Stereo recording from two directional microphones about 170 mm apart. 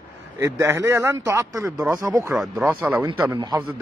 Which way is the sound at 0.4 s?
15° right (ahead or behind).